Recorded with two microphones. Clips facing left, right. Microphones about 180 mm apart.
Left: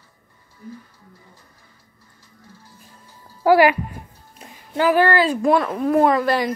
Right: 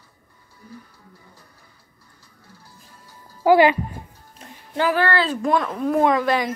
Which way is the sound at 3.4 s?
20° right (ahead or behind).